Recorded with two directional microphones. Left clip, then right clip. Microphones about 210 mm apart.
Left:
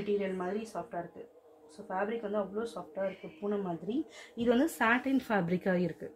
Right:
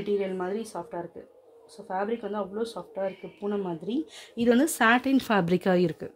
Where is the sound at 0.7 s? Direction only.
40° right (ahead or behind).